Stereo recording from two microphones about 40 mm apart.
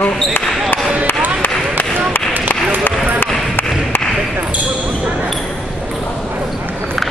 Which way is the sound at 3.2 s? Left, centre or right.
Left.